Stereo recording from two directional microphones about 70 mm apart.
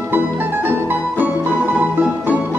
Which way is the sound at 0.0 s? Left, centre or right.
Right.